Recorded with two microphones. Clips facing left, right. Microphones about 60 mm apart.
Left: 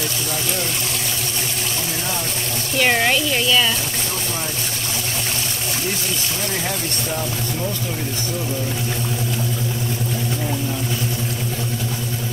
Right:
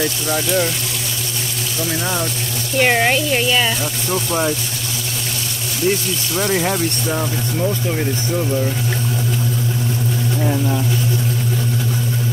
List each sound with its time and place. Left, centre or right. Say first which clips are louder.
2.8 s speech: right 2 dB; centre
6.4 s speech: right 10 dB; right